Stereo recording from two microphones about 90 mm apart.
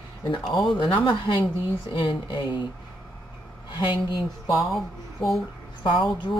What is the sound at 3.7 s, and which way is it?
Speech, 55° left (ahead or behind).